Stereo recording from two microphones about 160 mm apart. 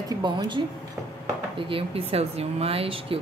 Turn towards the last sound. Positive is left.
turn(degrees=-35)  # may be behind; listen again after turning